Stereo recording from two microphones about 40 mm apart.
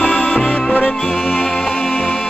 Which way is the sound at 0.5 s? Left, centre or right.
Left.